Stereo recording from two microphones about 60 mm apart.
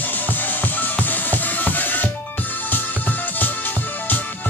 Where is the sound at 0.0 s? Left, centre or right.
Left.